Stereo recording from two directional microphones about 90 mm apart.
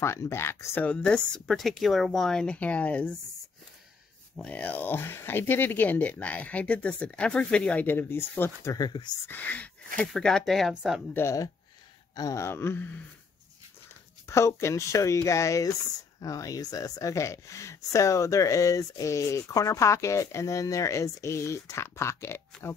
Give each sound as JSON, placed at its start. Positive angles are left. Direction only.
{"t": 0.0, "sound": "speech", "side_deg": 30}
{"t": 0.8, "sound": "speech", "side_deg": 10}
{"t": 4.4, "sound": "speech", "side_deg": 15}
{"t": 8.7, "sound": "speech", "side_deg": 45}
{"t": 9.3, "sound": "speech", "side_deg": 20}
{"t": 10.1, "sound": "speech", "side_deg": 5}
{"t": 11.1, "sound": "speech", "side_deg": 30}
{"t": 14.2, "sound": "speech", "side_deg": 30}